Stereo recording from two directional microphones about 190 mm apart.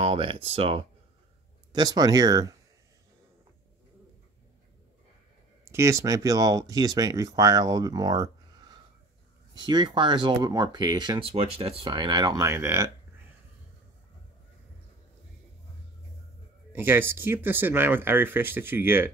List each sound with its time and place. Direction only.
0.0 s speech: 30° right (ahead or behind)
1.7 s speech: 20° right (ahead or behind)
5.7 s speech: 15° right (ahead or behind)
16.7 s speech: 10° right (ahead or behind)